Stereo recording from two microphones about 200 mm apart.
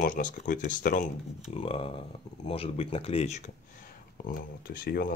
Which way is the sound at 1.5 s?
30° left (ahead or behind).